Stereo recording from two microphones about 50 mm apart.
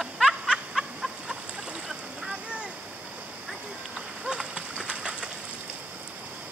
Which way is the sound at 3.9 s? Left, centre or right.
Centre.